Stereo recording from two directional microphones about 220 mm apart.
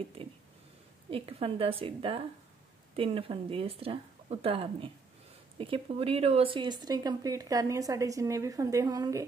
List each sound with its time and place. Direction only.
1.1 s speech: 25° right (ahead or behind)